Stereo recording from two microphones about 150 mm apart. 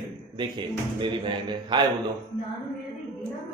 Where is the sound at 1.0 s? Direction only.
30° right (ahead or behind).